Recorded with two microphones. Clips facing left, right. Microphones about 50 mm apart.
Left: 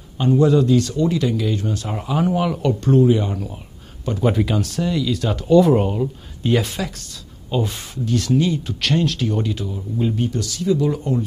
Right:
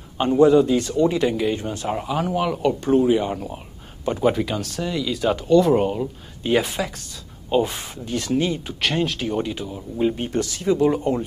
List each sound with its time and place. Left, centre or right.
0.2 s speech: centre
2.0 s speech: centre
5.5 s speech: centre
6.5 s speech: centre; by 11.2 s right